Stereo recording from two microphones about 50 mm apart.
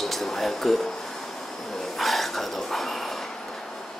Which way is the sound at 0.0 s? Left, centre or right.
Centre.